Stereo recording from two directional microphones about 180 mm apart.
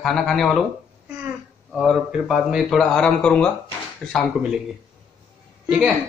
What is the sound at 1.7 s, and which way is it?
A man's voice, centre (ahead or behind).